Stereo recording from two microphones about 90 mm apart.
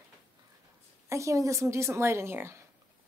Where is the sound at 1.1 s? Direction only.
35° right (ahead or behind).